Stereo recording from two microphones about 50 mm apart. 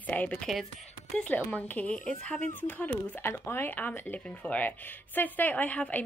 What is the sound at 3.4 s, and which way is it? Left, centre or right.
A woman's voice, left.